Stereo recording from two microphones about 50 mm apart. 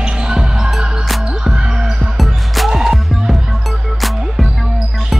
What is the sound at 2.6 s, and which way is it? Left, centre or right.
Music, centre.